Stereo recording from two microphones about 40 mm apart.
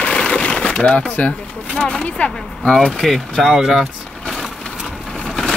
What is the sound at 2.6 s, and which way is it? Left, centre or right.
Speech, centre.